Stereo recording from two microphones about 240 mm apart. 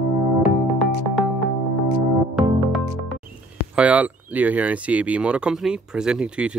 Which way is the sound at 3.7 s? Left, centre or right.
Centre.